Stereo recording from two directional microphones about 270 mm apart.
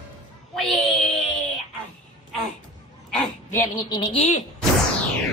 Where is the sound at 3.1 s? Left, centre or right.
Centre.